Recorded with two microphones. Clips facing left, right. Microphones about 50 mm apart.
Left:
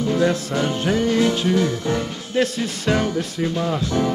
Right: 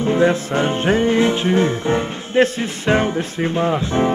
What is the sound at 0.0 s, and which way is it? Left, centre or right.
Music, right.